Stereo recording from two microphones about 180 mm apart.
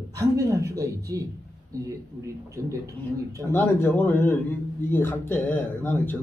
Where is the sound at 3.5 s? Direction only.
10° left (ahead or behind).